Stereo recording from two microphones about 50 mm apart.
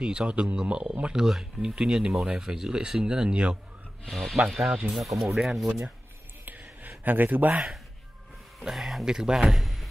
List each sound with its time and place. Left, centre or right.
0.0 s speech: centre
1.2 s speech: centre
4.1 s speech: centre
5.2 s speech: centre
6.4 s a sound: right
7.1 s a man's voice: right
8.5 s a man's voice: centre